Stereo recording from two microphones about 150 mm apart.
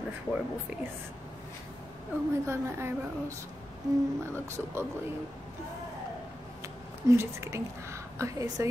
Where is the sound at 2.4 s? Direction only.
20° right (ahead or behind).